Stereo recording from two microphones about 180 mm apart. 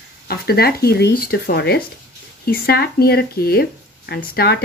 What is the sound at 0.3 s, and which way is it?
Speech, 60° left (ahead or behind).